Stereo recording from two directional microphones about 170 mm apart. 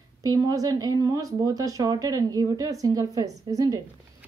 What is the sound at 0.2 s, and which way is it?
A woman's voice, 20° right (ahead or behind).